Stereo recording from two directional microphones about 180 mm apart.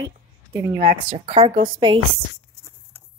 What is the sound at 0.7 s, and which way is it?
Speech, 45° right (ahead or behind).